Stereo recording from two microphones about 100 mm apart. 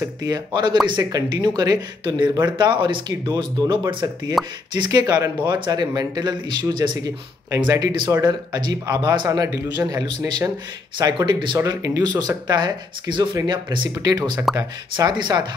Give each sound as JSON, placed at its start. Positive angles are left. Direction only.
{"t": 0.0, "sound": "speech", "side_deg": -40}
{"t": 2.4, "sound": "a man's voice", "side_deg": -50}
{"t": 11.6, "sound": "a man's voice", "side_deg": -35}